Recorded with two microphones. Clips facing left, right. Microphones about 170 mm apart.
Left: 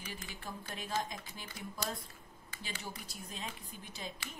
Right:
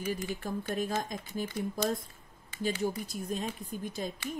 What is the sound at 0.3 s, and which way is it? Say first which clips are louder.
Speech: right 11 dB; 45° right (ahead or behind).